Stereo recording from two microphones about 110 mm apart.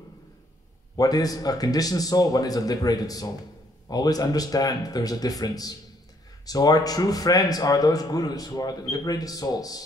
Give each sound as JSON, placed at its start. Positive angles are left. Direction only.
{"t": 0.9, "sound": "a man's voice", "side_deg": 35}